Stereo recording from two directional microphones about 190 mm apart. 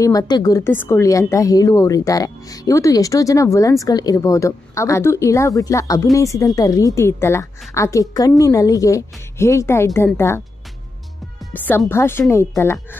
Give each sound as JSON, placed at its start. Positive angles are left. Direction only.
{"t": 0.0, "sound": "a woman's voice", "side_deg": 20}
{"t": 11.5, "sound": "a woman's voice", "side_deg": 10}